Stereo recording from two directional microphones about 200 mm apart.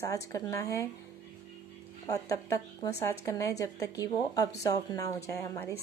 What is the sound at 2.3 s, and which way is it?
Speech, 15° left (ahead or behind).